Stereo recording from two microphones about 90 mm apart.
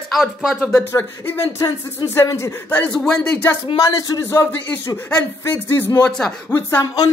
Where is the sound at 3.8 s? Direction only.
40° left (ahead or behind).